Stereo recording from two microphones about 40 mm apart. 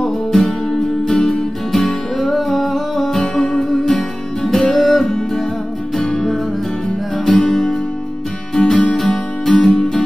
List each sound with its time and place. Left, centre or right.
0.0 s music: centre
8.6 s music: left
8.9 s music: centre